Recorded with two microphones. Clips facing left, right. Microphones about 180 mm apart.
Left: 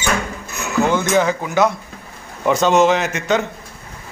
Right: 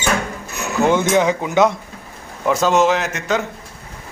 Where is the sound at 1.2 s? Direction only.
20° right (ahead or behind).